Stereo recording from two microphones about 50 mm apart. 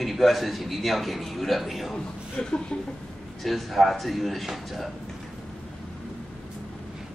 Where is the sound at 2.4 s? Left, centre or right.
Centre.